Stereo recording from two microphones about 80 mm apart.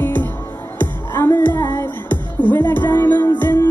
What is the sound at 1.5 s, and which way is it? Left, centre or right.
Music, left.